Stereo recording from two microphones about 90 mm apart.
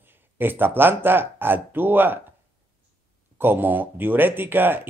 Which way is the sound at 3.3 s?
20° right (ahead or behind).